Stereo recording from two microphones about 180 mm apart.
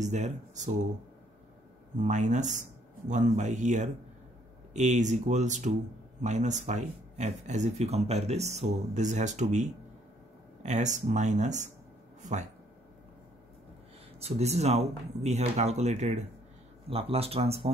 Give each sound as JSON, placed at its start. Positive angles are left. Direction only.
{"t": 0.0, "sound": "speech", "side_deg": -40}
{"t": 2.0, "sound": "speech", "side_deg": -40}
{"t": 14.2, "sound": "speech", "side_deg": -35}